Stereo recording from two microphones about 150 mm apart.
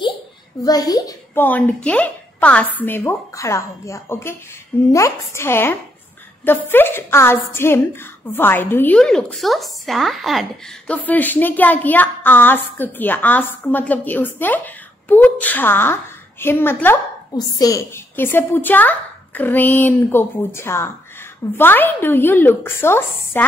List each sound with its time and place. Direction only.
0.7 s a child's voice: 25° left (ahead or behind)
1.4 s a woman's voice: 10° left (ahead or behind)
10.9 s a woman's voice: 10° left (ahead or behind)
17.3 s a woman's voice: 25° left (ahead or behind)